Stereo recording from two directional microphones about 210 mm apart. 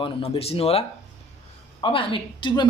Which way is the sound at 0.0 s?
25° left (ahead or behind).